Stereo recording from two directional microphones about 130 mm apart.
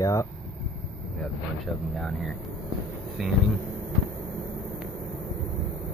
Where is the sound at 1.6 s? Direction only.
5° left (ahead or behind).